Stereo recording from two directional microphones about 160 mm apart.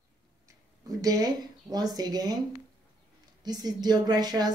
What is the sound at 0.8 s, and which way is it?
Speech, 20° right (ahead or behind).